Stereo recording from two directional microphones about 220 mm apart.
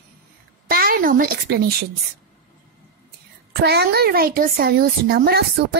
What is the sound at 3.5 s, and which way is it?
A woman's voice, 45° right (ahead or behind).